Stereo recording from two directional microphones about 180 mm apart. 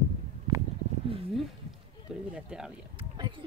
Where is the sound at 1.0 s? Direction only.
30° right (ahead or behind).